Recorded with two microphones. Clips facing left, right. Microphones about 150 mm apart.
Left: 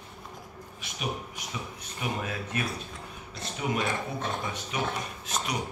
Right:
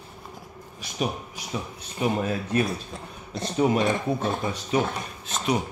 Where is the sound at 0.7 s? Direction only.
35° right (ahead or behind).